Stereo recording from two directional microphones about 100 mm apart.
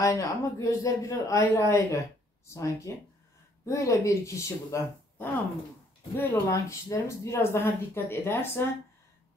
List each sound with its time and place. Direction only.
0.0 s a man's voice: 30° left (ahead or behind)
6.1 s speech: 20° left (ahead or behind)
6.7 s speech: 30° left (ahead or behind)